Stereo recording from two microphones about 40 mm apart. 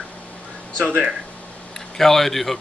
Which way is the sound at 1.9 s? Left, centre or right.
Centre.